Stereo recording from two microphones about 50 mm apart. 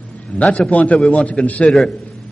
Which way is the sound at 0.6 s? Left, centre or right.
Left.